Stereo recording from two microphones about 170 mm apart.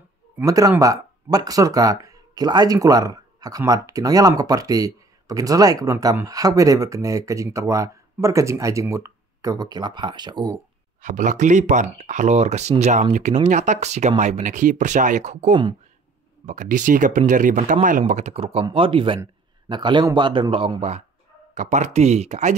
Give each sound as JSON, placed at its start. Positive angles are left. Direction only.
{"t": 0.4, "sound": "speech", "side_deg": -20}
{"t": 11.0, "sound": "speech", "side_deg": -50}